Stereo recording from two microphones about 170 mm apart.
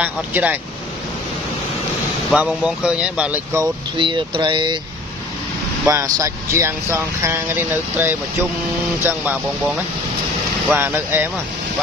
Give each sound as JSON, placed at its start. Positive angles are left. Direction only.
{"t": 0.0, "sound": "speech", "side_deg": -10}
{"t": 2.3, "sound": "speech", "side_deg": -5}
{"t": 4.0, "sound": "speech", "side_deg": -30}
{"t": 5.9, "sound": "speech", "side_deg": -20}
{"t": 10.7, "sound": "speech", "side_deg": -10}